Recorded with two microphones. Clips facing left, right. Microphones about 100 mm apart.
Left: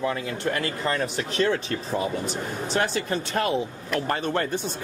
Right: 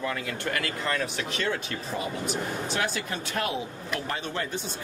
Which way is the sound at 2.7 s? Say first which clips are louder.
Left 8 dB; 40° left (ahead or behind).